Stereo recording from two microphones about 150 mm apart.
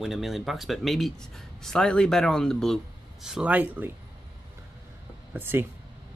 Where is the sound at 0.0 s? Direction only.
Centre (ahead or behind).